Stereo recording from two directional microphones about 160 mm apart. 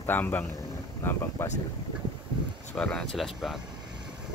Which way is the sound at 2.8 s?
5° left (ahead or behind).